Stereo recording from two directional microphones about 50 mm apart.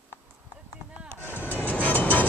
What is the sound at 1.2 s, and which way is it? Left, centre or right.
Train, left.